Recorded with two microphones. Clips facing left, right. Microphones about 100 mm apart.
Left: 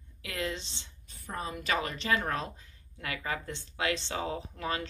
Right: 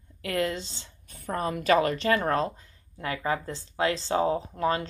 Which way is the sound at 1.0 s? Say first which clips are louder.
Right 8 dB; 60° right (ahead or behind).